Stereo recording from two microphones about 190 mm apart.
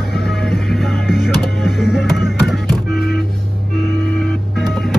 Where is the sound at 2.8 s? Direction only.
55° left (ahead or behind).